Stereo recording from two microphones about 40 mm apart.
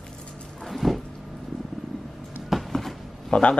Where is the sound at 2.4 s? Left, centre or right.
Centre.